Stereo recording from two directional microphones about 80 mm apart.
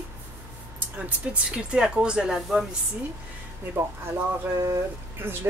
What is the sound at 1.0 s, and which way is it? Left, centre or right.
Speech, centre.